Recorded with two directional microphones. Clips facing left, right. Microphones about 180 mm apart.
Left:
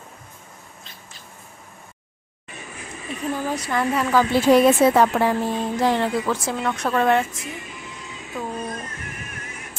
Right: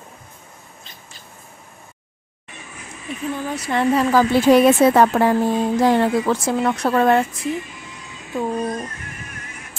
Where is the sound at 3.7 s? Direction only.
35° right (ahead or behind).